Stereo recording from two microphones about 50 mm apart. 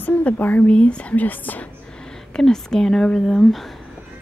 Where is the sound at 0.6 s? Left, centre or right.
Left.